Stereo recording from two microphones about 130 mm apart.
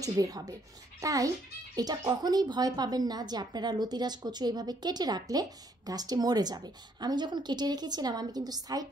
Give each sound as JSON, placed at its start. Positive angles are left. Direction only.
{"t": 0.0, "sound": "a woman's voice", "side_deg": -25}